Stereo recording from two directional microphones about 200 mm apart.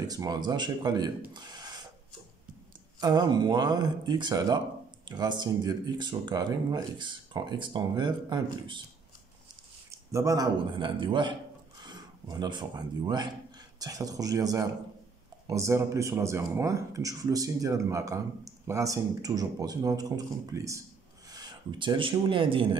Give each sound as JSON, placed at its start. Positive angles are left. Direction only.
{"t": 0.1, "sound": "speech", "side_deg": -20}
{"t": 3.0, "sound": "speech", "side_deg": -20}
{"t": 9.8, "sound": "speech", "side_deg": -15}